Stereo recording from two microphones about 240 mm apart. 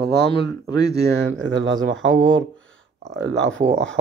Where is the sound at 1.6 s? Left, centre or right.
Right.